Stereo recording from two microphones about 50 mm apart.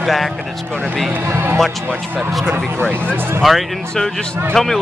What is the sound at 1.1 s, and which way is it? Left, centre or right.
Speech, right.